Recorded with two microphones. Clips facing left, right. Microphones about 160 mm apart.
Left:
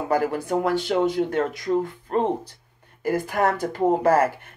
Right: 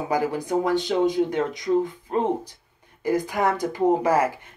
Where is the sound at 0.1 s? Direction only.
15° right (ahead or behind).